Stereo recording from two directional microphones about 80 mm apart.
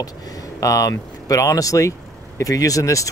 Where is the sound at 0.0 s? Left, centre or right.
Left.